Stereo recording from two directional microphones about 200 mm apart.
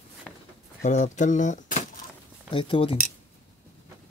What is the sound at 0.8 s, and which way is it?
Speech, 35° left (ahead or behind).